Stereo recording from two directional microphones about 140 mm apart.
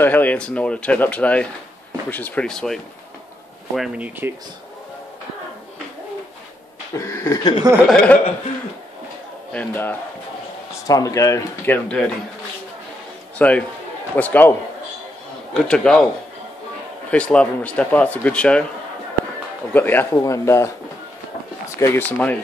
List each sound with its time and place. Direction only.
0.0 s speech: 10° left (ahead or behind); by 4.3 s 10° right (ahead or behind)
7.0 s speech: 20° left (ahead or behind)
7.9 s speech: 5° left (ahead or behind)
9.5 s speech: 10° left (ahead or behind)
10.9 s speech: 25° left (ahead or behind)
13.4 s speech: 10° left (ahead or behind)
15.5 s speech: 5° left (ahead or behind)
17.1 s speech: 10° left (ahead or behind)
19.7 s speech: 15° left (ahead or behind)